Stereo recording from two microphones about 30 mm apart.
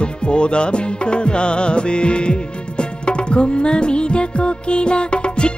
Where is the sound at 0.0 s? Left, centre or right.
Left.